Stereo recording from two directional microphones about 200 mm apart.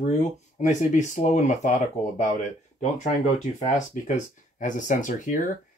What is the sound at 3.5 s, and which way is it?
Speech, 35° left (ahead or behind).